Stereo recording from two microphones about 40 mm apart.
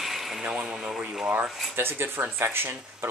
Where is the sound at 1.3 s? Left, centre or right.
Right.